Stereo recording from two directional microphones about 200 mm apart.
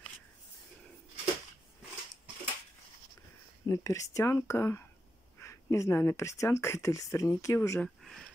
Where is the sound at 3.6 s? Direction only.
15° left (ahead or behind).